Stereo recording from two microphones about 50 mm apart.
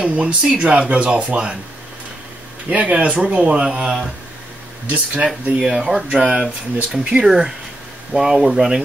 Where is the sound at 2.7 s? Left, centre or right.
Right.